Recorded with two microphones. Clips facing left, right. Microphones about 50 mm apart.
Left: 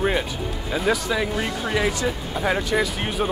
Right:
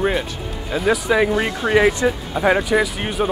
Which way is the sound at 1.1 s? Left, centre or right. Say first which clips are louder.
Right 7 dB; right.